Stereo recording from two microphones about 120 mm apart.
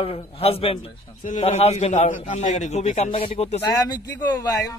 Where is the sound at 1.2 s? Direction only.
75° left (ahead or behind); by 3.6 s 60° left (ahead or behind).